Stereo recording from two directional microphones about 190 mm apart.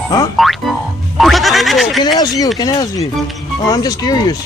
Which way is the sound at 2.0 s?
20° left (ahead or behind).